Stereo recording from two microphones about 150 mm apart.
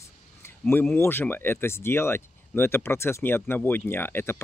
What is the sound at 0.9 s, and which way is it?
Speech, 15° left (ahead or behind).